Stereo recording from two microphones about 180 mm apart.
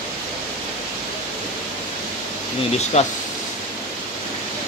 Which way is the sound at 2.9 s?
40° left (ahead or behind).